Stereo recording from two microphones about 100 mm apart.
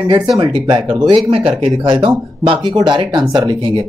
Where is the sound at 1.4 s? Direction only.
5° right (ahead or behind).